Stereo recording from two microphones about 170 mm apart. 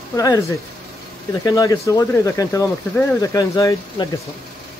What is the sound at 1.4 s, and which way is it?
Speech, 20° left (ahead or behind).